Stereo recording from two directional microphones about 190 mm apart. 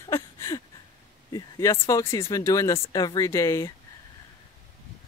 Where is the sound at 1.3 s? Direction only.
20° left (ahead or behind).